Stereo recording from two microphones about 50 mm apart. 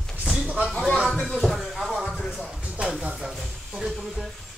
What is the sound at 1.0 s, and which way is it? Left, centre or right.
Speech, centre.